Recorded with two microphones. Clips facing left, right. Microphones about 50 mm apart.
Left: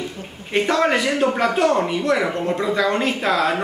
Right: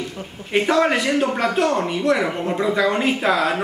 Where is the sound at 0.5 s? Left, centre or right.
Centre.